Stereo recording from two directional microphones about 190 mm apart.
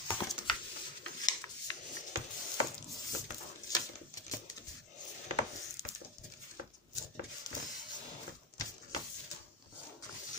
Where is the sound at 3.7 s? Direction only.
20° left (ahead or behind).